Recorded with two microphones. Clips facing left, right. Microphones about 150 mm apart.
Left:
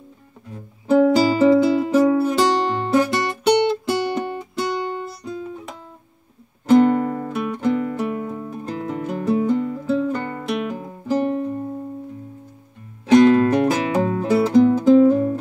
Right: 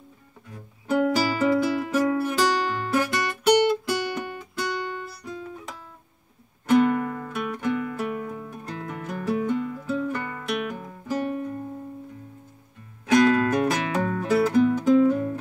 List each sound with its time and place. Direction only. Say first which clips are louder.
0.5 s music: left 8 dB; 25° left (ahead or behind)
6.7 s music: left 6 dB; 30° left (ahead or behind)
13.0 s music: left 6 dB; 30° left (ahead or behind)